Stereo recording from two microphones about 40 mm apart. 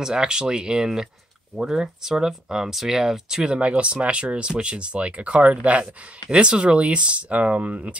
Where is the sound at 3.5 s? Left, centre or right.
Right.